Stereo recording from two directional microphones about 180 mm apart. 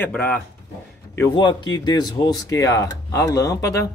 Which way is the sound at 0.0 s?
10° left (ahead or behind).